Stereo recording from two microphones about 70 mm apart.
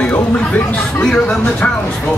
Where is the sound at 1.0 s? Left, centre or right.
Centre.